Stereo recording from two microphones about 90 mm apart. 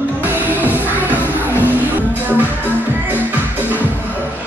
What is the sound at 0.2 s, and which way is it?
Music, 20° right (ahead or behind).